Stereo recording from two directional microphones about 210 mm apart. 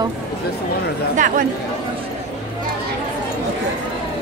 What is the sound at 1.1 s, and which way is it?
Speech, 40° right (ahead or behind).